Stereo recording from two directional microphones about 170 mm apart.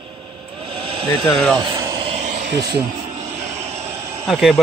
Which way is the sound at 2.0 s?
45° right (ahead or behind).